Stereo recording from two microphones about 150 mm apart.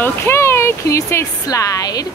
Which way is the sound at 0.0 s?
15° left (ahead or behind).